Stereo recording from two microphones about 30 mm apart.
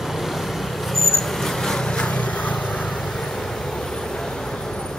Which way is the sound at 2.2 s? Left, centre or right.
Left.